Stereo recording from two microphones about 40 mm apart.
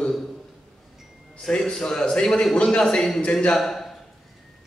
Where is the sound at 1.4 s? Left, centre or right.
Centre.